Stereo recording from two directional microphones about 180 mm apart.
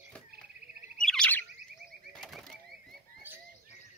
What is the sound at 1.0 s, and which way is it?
Bird, 5° left (ahead or behind).